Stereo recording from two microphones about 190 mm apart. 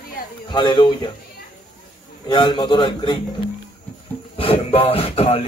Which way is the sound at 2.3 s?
25° left (ahead or behind).